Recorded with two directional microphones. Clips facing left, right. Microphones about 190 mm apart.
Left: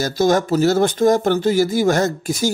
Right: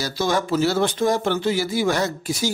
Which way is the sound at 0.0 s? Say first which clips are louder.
Left 6 dB; 45° left (ahead or behind).